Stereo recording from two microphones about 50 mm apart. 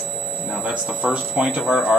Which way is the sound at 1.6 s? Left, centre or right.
Centre.